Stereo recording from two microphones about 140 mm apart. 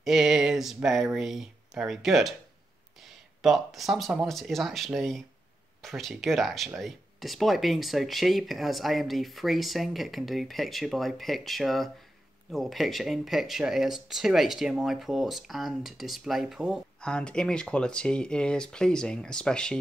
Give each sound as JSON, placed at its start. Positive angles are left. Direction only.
{"t": 0.0, "sound": "speech", "side_deg": 0}